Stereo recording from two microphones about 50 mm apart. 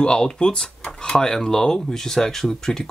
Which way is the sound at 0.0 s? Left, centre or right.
Centre.